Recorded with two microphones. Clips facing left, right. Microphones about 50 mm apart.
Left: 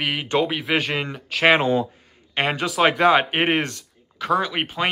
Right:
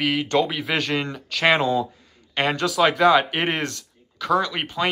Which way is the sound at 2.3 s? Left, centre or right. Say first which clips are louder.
Right 1 dB; left.